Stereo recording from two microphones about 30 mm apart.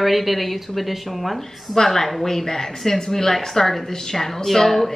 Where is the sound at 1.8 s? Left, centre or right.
Centre.